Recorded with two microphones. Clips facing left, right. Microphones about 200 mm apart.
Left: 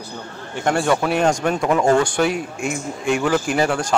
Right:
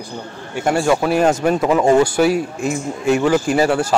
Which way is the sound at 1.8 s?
15° right (ahead or behind).